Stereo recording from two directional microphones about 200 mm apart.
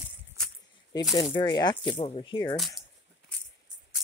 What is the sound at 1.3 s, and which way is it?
Speech, 20° left (ahead or behind).